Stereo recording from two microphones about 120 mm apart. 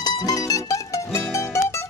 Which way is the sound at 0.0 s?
35° left (ahead or behind).